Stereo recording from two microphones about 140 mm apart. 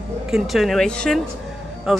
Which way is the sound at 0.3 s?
Centre (ahead or behind).